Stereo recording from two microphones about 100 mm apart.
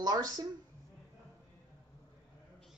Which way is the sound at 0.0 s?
40° right (ahead or behind).